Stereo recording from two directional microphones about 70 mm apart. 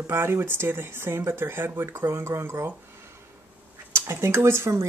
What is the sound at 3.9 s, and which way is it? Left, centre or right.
Speech, right.